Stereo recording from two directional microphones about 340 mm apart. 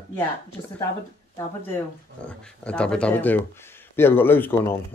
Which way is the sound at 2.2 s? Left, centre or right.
Centre.